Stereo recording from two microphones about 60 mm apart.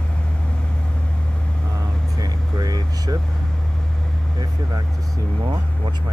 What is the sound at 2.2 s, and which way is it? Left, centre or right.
Vehicle, right.